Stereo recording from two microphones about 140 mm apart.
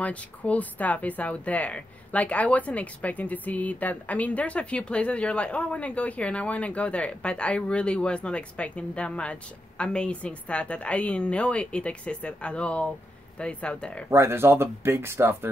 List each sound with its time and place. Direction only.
0.0 s speech: 10° left (ahead or behind)
14.1 s speech: 20° right (ahead or behind)